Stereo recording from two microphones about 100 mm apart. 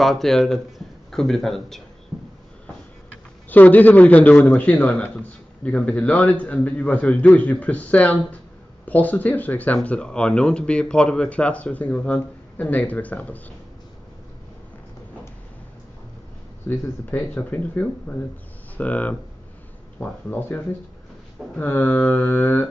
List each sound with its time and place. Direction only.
0.0 s speech: centre (ahead or behind)
3.4 s a man's voice: 15° left (ahead or behind)
16.6 s a man's voice: 20° left (ahead or behind)